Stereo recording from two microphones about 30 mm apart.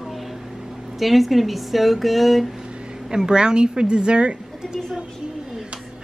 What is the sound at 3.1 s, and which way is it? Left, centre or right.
Child singing, right.